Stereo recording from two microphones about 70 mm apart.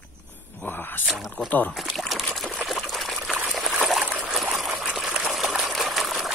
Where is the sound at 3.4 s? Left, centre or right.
Centre.